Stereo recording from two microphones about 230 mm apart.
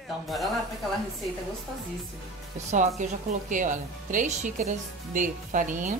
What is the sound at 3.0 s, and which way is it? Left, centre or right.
Speech, right.